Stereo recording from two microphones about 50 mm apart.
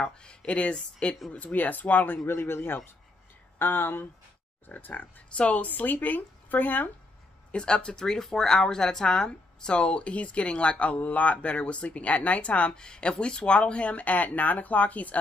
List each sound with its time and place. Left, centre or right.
0.2 s speech: centre
1.3 s speech: left
2.2 s a man's voice: left
4.6 s speech: left
5.4 s speech: left
5.7 s speech: left
7.5 s speech: centre